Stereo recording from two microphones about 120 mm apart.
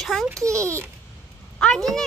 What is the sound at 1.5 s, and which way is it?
Speech, 5° left (ahead or behind).